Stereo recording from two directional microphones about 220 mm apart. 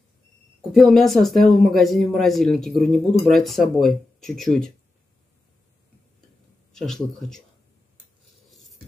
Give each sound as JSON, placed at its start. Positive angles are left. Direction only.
{"t": 0.7, "sound": "speech", "side_deg": 0}
{"t": 6.7, "sound": "speech", "side_deg": 0}
{"t": 8.5, "sound": "cutlery", "side_deg": 0}